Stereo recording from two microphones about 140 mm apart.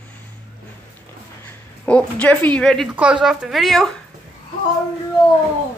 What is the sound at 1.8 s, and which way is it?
Speech, 10° left (ahead or behind).